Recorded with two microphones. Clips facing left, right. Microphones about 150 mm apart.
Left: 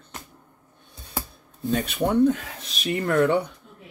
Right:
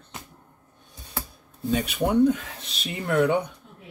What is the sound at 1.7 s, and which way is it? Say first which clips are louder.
Speech: even; 15° right (ahead or behind).